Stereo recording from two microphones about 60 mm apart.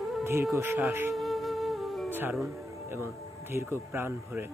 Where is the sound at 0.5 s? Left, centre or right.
Right.